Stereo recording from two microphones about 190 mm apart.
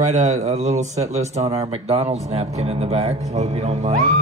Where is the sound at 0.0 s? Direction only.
40° right (ahead or behind).